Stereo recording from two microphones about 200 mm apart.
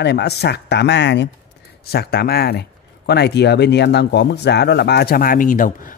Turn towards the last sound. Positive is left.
turn(degrees=40)  # may be behind; listen again after turning